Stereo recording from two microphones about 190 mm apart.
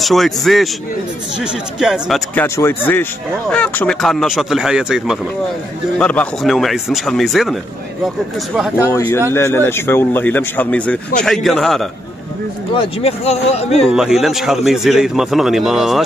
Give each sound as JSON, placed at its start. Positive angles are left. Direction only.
{"t": 0.0, "sound": "speech", "side_deg": 0}
{"t": 2.4, "sound": "speech", "side_deg": 15}
{"t": 8.5, "sound": "speech", "side_deg": -5}
{"t": 8.8, "sound": "a man's voice", "side_deg": 15}
{"t": 12.7, "sound": "speech", "side_deg": 35}
{"t": 13.9, "sound": "speech", "side_deg": 0}